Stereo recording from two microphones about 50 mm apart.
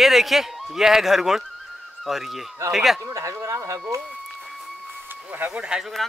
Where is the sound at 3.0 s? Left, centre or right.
Right.